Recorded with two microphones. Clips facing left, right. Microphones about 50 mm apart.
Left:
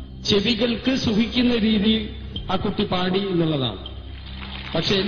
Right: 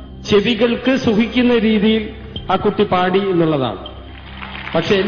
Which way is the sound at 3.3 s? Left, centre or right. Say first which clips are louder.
Right 7 dB; right.